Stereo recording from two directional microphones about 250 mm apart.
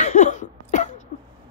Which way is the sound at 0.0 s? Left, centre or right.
Left.